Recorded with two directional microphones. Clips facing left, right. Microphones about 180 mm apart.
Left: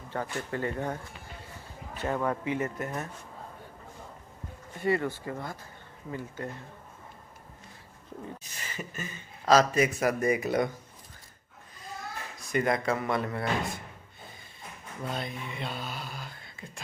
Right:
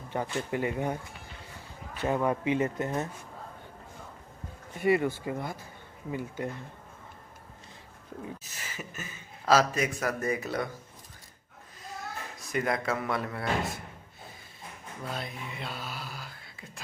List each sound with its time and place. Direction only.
0.1 s speech: 15° right (ahead or behind)
2.0 s speech: 15° right (ahead or behind)
4.7 s speech: 15° right (ahead or behind)
8.2 s speech: 5° right (ahead or behind)
10.0 s speech: 10° left (ahead or behind)
12.4 s speech: centre (ahead or behind)
15.0 s speech: centre (ahead or behind)